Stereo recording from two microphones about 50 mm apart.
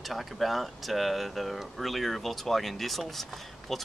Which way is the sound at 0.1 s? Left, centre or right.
Centre.